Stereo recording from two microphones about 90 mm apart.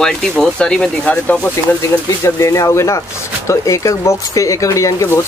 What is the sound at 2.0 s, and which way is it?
Speech, 35° left (ahead or behind).